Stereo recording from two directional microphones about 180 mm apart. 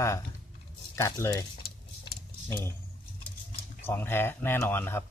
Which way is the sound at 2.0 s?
15° left (ahead or behind).